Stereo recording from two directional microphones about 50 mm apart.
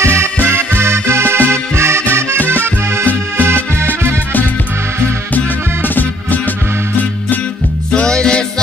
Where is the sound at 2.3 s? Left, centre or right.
Left.